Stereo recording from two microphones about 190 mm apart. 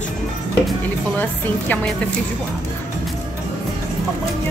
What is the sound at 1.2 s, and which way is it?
Speech, 10° left (ahead or behind).